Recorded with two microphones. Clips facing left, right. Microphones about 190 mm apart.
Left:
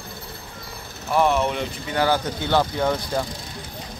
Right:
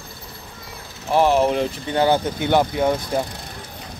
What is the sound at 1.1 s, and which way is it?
Speech, 30° right (ahead or behind).